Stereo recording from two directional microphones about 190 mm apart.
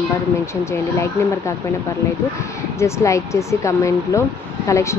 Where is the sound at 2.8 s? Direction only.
15° left (ahead or behind).